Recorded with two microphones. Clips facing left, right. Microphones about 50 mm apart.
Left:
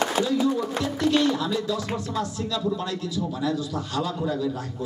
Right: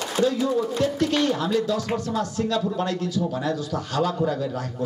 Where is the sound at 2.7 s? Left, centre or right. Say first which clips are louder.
Right 4 dB; right.